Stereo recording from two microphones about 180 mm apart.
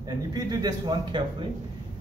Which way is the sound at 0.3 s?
20° right (ahead or behind).